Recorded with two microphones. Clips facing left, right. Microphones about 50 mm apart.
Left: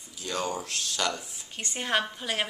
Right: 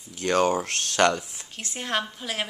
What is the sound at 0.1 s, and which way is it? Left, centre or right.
Speech, right.